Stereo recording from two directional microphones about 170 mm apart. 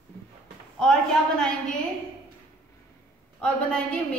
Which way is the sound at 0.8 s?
5° left (ahead or behind).